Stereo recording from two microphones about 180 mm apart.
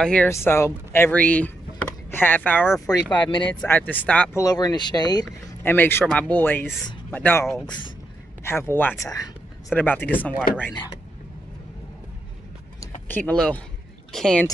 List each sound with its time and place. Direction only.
0.0 s speech: 5° left (ahead or behind)
2.9 s speech: 25° left (ahead or behind)
3.6 s speech: 10° left (ahead or behind)
4.4 s speech: 20° left (ahead or behind)
5.6 s speech: 10° left (ahead or behind)
13.1 s speech: 10° left (ahead or behind)